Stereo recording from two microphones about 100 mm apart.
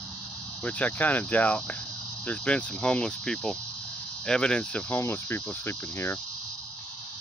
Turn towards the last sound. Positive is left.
turn(degrees=25)  # may be behind; listen again after turning